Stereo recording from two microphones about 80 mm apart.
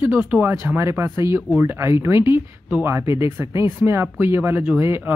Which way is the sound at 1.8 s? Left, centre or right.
Right.